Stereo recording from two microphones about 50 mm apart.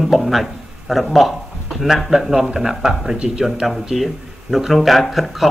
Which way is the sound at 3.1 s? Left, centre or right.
Right.